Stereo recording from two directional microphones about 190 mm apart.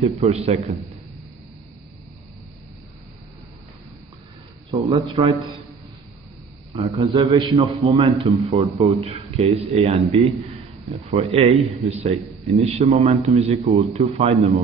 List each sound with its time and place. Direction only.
0.0 s a man's voice: 35° right (ahead or behind)
4.8 s a man's voice: 30° right (ahead or behind)
6.7 s a man's voice: 30° right (ahead or behind)